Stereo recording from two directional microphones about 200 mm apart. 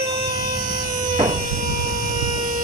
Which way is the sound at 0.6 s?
40° right (ahead or behind).